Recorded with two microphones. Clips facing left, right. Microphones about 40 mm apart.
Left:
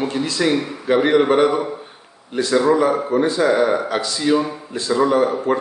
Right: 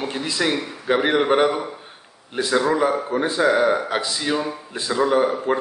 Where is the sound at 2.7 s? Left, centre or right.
Centre.